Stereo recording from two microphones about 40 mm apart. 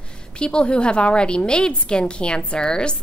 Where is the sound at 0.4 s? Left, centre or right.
Left.